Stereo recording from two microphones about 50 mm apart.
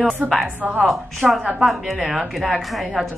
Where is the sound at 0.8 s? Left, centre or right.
Centre.